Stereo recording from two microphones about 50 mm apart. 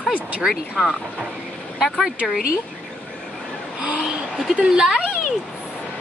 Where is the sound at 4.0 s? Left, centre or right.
Centre.